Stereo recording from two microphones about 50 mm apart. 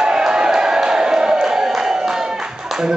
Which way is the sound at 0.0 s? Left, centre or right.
Centre.